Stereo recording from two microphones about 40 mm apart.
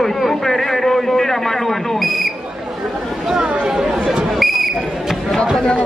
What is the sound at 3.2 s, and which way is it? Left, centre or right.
Speech, centre.